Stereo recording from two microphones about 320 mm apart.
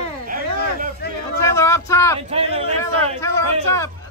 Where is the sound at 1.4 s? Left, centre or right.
Centre.